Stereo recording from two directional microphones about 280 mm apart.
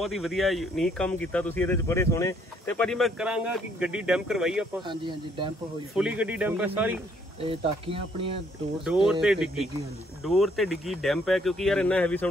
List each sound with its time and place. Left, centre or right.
0.0 s speech: centre
4.8 s speech: centre
5.9 s speech: centre
7.4 s speech: centre
8.8 s speech: centre